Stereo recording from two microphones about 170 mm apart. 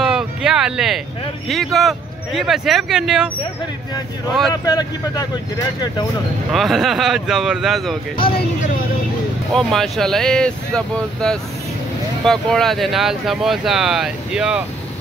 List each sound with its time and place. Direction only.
0.0 s a sound: 5° right (ahead or behind)
1.5 s speech: centre (ahead or behind)
4.6 s speech: 25° left (ahead or behind)
6.5 s speech: centre (ahead or behind)
9.5 s speech: centre (ahead or behind)